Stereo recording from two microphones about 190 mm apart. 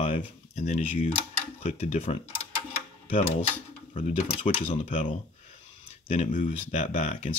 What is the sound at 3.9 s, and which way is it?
Speech, 35° left (ahead or behind).